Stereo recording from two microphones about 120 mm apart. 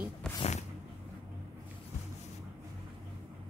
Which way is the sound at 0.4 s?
70° left (ahead or behind).